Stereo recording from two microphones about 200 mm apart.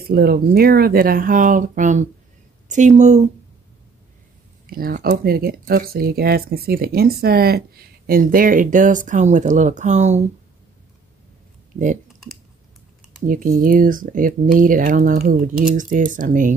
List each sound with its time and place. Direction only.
0.1 s speech: 50° right (ahead or behind)
4.6 s speech: 45° right (ahead or behind)
13.2 s speech: 45° right (ahead or behind)